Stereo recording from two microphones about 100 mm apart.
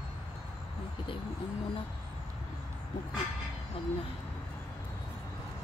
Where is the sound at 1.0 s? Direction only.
55° left (ahead or behind).